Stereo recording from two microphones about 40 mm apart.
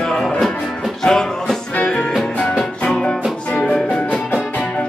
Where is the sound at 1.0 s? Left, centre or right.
Centre.